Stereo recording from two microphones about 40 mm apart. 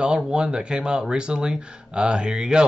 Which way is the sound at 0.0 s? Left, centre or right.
Right.